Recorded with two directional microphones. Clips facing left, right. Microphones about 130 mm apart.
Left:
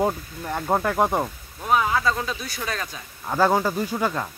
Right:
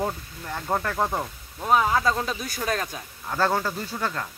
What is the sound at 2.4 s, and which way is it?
Speech, 45° right (ahead or behind).